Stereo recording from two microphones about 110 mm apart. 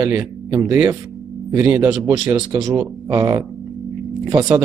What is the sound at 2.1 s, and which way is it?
Speech, 35° right (ahead or behind).